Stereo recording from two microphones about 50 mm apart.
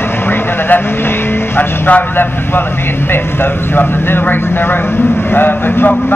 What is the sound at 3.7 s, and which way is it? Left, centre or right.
Speech, left.